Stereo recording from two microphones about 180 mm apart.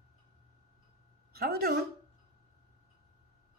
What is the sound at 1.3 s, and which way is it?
Speech, 55° right (ahead or behind).